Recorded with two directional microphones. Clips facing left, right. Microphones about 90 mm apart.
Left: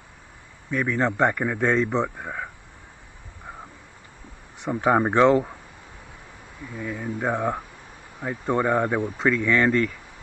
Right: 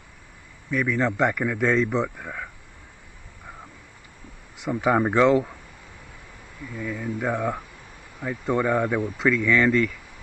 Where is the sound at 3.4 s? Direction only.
25° left (ahead or behind).